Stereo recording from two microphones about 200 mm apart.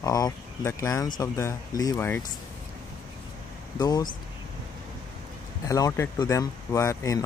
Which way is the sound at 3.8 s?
20° left (ahead or behind).